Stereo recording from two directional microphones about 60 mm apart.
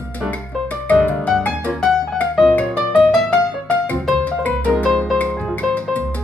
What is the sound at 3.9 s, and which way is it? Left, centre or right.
Music, left.